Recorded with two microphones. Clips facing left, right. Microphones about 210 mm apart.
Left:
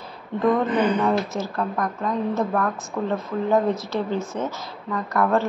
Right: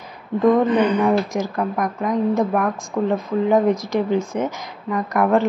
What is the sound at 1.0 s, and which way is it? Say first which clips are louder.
Speech: right 4 dB; 15° right (ahead or behind).